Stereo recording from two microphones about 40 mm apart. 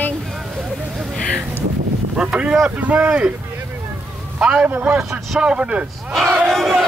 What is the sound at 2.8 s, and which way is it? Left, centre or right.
Speech, right.